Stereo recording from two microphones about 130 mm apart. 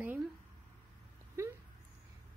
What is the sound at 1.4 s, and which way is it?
Dog, 20° right (ahead or behind).